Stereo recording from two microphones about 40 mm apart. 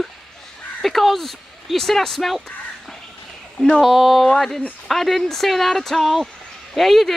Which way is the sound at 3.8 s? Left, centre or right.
Centre.